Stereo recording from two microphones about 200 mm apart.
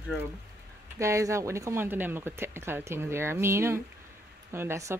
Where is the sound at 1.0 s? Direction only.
15° right (ahead or behind).